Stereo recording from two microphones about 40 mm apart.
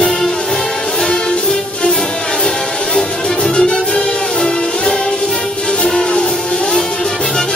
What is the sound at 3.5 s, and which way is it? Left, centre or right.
Music, centre.